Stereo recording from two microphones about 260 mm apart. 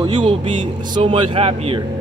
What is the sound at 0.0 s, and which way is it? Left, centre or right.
Speech, centre.